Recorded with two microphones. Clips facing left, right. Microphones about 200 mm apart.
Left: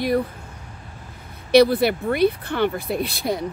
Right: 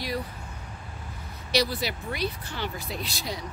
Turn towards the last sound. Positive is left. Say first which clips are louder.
# left 10 dB
turn(degrees=55)  # may be behind; listen again after turning